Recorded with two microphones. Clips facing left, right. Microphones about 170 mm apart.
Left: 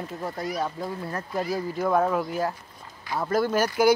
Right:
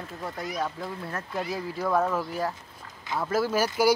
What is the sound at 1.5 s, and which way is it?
Speech, centre (ahead or behind).